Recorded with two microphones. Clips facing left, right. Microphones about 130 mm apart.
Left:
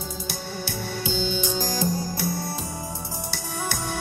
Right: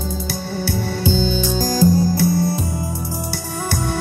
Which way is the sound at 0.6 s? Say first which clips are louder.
Right 9 dB; 40° right (ahead or behind).